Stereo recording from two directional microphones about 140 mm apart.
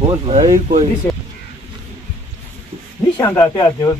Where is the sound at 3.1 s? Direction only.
20° left (ahead or behind).